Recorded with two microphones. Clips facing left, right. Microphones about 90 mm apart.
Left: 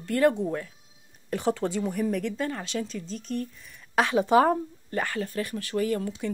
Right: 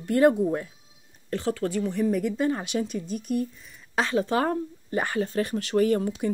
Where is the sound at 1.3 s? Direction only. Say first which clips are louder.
Even; 15° left (ahead or behind).